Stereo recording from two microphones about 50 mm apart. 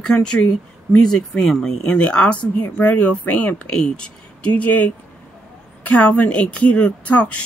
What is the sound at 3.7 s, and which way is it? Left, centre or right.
Speech, centre.